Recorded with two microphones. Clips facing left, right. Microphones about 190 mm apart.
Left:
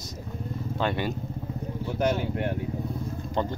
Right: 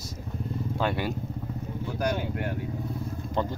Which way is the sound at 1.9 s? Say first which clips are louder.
Left 3 dB; 25° left (ahead or behind).